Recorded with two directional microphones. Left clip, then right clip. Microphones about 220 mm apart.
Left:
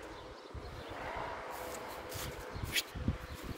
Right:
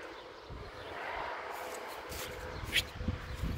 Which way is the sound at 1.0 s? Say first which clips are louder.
Right 2 dB; 55° left (ahead or behind).